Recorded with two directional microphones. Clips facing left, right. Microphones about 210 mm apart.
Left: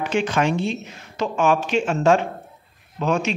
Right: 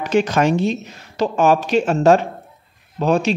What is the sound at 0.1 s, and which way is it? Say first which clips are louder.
A man's voice: right 6 dB; 40° right (ahead or behind).